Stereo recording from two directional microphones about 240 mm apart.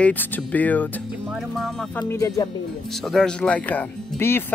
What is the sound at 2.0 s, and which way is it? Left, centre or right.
Speech, centre.